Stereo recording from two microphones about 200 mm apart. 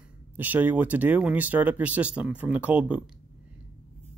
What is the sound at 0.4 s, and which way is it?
Speech, 10° right (ahead or behind).